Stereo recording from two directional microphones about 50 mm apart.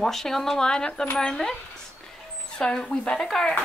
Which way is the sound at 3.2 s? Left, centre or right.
Centre.